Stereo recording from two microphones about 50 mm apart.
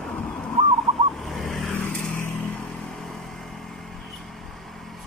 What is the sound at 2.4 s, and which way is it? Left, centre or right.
Vehicle, centre.